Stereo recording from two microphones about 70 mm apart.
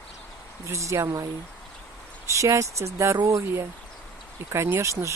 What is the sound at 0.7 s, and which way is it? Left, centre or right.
Speech, right.